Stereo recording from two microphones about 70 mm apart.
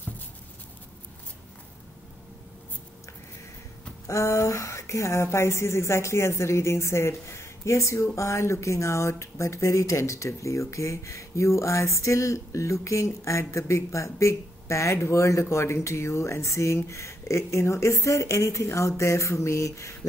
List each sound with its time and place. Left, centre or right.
4.1 s speech: left